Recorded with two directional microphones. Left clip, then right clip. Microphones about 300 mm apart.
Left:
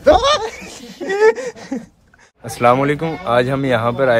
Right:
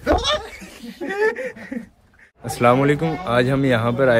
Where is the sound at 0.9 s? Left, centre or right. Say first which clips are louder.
Left 7 dB; left.